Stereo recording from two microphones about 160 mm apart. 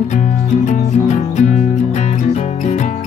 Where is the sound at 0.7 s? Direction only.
50° left (ahead or behind).